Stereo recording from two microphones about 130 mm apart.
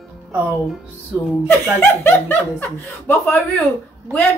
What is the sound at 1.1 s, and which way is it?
Speech, 20° right (ahead or behind).